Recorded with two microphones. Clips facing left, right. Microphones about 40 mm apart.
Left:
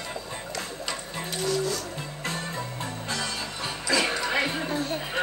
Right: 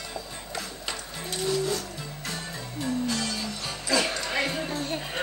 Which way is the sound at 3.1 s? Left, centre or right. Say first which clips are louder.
Right 1 dB; left.